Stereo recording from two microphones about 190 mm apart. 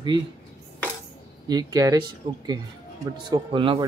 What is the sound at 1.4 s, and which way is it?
Speech, 20° right (ahead or behind).